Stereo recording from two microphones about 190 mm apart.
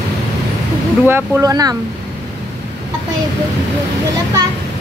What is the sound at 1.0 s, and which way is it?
Speech, 10° right (ahead or behind).